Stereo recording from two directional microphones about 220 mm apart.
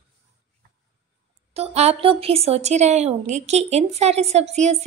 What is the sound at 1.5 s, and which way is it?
Speech, 30° right (ahead or behind).